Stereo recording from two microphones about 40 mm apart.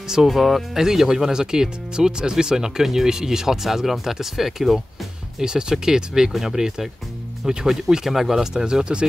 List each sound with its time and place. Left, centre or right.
0.1 s speech: centre
5.4 s speech: centre
8.6 s speech: right